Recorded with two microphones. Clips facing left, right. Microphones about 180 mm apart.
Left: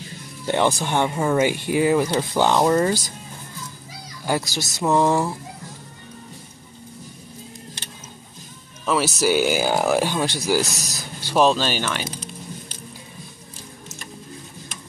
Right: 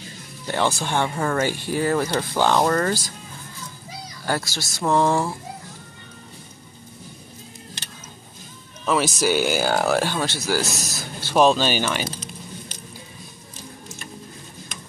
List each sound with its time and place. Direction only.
0.5 s speech: 15° left (ahead or behind)
4.3 s speech: 20° left (ahead or behind)
4.8 s speech: 5° left (ahead or behind)
8.8 s speech: 5° left (ahead or behind)
11.3 s speech: centre (ahead or behind)